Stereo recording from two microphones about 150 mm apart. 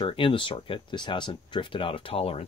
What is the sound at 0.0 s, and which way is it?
Speech, 35° left (ahead or behind).